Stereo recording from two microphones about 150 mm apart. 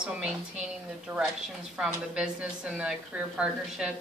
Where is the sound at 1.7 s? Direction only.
5° right (ahead or behind).